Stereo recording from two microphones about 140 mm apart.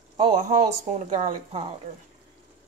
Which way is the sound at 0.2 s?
55° right (ahead or behind).